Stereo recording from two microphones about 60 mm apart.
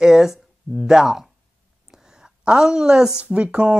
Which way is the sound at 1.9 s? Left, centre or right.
Centre.